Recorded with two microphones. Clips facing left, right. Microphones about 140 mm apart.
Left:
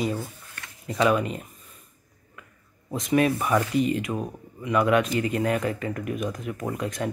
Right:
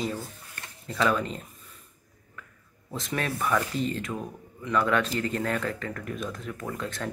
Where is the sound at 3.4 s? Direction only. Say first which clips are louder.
Left 4 dB; 15° left (ahead or behind).